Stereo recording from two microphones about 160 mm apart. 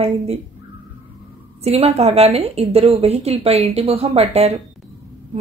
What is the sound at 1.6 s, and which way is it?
A woman's voice, 40° right (ahead or behind).